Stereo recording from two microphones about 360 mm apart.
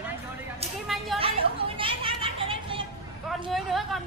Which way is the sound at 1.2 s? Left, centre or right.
Centre.